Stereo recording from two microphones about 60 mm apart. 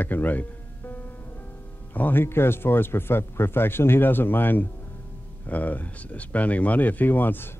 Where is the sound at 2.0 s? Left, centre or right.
Left.